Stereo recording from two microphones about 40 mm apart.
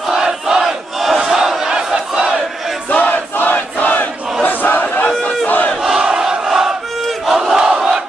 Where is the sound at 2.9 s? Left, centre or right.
Left.